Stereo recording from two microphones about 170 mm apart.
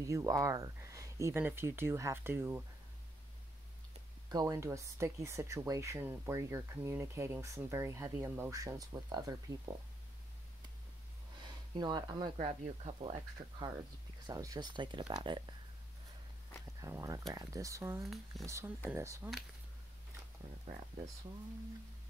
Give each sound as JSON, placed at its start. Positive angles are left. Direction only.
{"t": 0.0, "sound": "speech", "side_deg": -20}
{"t": 4.3, "sound": "speech", "side_deg": -20}
{"t": 11.7, "sound": "speech", "side_deg": -25}
{"t": 12.4, "sound": "speech", "side_deg": -40}
{"t": 14.2, "sound": "speech", "side_deg": -20}
{"t": 16.8, "sound": "speech", "side_deg": -20}
{"t": 18.0, "sound": "speech", "side_deg": 0}
{"t": 18.4, "sound": "speech", "side_deg": -15}